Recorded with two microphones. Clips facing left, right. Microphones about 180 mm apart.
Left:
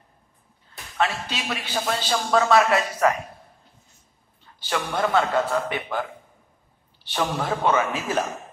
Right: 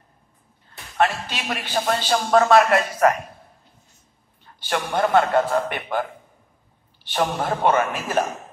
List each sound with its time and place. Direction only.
0.9 s a man's voice: 55° right (ahead or behind)
4.6 s a man's voice: 50° right (ahead or behind)
7.1 s a man's voice: 50° right (ahead or behind)